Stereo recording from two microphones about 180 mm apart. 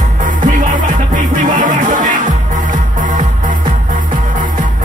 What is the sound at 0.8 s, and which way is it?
Music, 45° right (ahead or behind).